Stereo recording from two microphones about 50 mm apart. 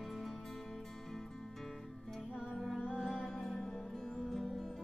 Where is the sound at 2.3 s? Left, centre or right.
Centre.